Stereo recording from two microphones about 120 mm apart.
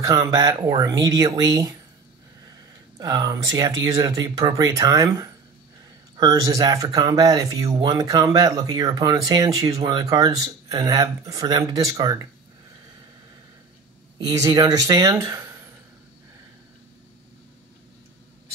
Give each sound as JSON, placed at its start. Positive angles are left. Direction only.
{"t": 0.0, "sound": "speech", "side_deg": -30}
{"t": 3.0, "sound": "speech", "side_deg": -35}
{"t": 14.1, "sound": "speech", "side_deg": -30}